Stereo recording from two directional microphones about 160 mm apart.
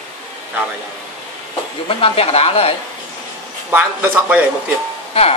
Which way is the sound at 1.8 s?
35° left (ahead or behind).